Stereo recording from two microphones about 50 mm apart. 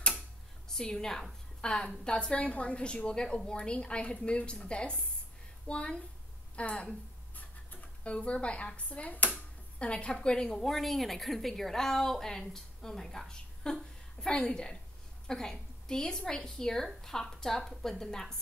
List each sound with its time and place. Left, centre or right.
0.7 s a woman's voice: centre